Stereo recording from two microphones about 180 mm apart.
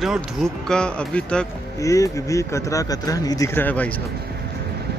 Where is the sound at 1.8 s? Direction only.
20° left (ahead or behind).